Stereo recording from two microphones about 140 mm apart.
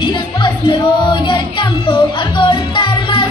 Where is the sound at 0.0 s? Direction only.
35° left (ahead or behind).